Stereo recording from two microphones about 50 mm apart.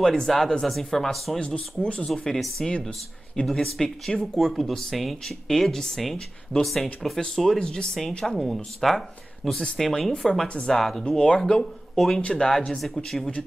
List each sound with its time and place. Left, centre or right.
0.0 s speech: centre
1.4 s speech: left
2.0 s speech: centre
7.2 s speech: centre
8.8 s speech: centre
11.1 s speech: centre